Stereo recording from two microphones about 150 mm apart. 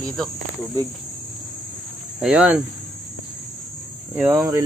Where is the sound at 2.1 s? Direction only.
10° right (ahead or behind).